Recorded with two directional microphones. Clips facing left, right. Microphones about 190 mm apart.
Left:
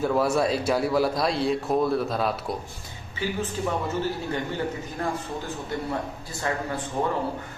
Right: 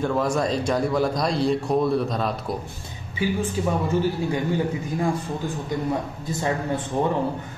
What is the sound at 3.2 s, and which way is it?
Speech, 10° right (ahead or behind).